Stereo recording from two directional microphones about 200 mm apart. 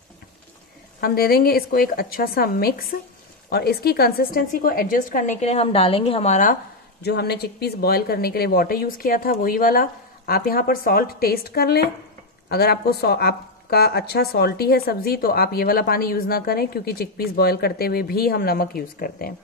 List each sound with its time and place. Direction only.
1.0 s a woman's voice: 50° left (ahead or behind)